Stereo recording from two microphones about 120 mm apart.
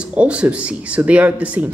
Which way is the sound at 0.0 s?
10° right (ahead or behind).